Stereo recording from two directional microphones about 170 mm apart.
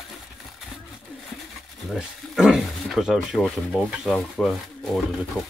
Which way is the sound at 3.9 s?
Centre (ahead or behind).